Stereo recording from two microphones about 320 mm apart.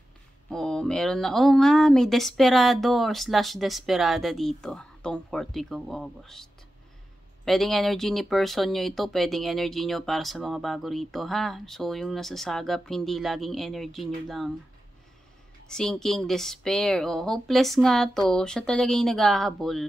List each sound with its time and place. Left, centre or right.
0.5 s speech: centre
15.7 s speech: centre